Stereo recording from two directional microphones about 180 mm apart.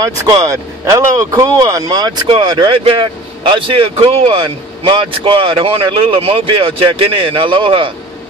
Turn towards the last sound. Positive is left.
turn(degrees=-30)  # may be behind; listen again after turning